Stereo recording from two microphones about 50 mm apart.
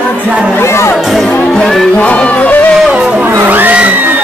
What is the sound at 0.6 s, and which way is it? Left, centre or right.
Speech, left.